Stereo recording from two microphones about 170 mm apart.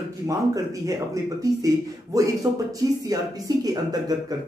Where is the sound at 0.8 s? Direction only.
20° right (ahead or behind).